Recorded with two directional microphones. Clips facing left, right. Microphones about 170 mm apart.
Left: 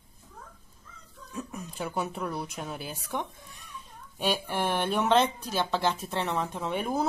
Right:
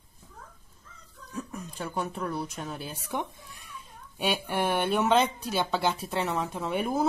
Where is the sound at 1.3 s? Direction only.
5° left (ahead or behind).